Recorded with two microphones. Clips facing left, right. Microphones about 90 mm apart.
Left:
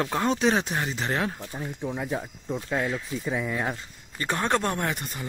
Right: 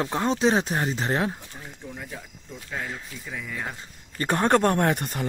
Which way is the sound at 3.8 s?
35° right (ahead or behind).